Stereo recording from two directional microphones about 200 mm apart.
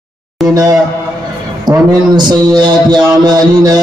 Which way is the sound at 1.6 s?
20° right (ahead or behind).